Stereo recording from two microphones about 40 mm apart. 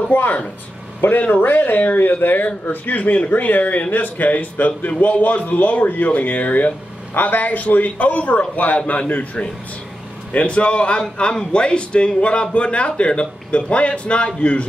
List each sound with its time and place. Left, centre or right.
0.1 s speech: left